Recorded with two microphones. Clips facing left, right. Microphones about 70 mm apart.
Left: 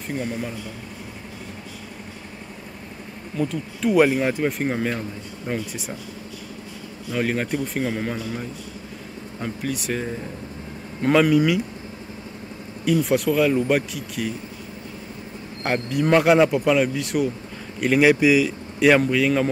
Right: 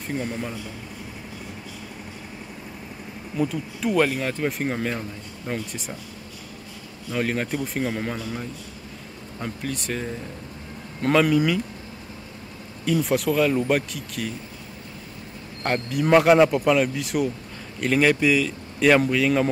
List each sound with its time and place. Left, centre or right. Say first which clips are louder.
0.1 s speech: left 1 dB; centre
3.3 s speech: even; centre
4.0 s speech: left 6 dB; centre
4.4 s speech: left 2 dB; centre
7.1 s speech: left 2 dB; centre
12.8 s speech: left 2 dB; centre
15.6 s speech: left 1 dB; centre